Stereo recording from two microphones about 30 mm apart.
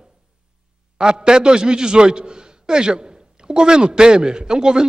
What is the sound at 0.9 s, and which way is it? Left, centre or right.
A man's voice, right.